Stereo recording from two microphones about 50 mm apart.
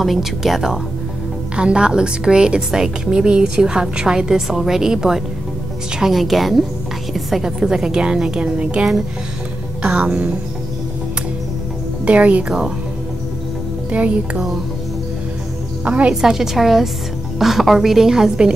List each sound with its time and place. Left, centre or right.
0.0 s a woman's voice: centre
1.6 s a woman's voice: centre
12.0 s speech: right
13.9 s speech: right
15.8 s a woman's voice: right
16.1 s a woman's voice: centre